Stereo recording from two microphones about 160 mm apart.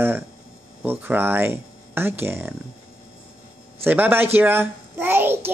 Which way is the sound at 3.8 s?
10° right (ahead or behind).